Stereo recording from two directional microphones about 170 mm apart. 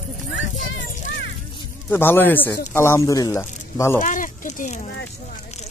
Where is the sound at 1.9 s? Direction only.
10° left (ahead or behind).